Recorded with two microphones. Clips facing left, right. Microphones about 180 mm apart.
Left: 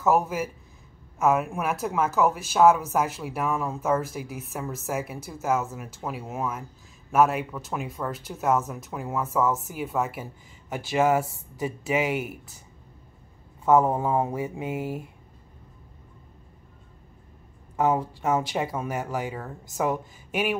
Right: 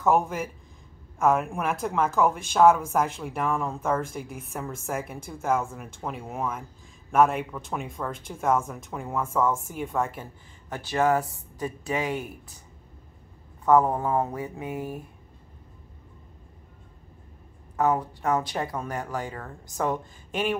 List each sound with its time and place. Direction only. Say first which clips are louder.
0.0 s speech: even; 5° left (ahead or behind)
13.7 s speech: even; 20° left (ahead or behind)
13.9 s speech: left 1 dB; 10° left (ahead or behind)
17.7 s speech: left 1 dB; 10° left (ahead or behind)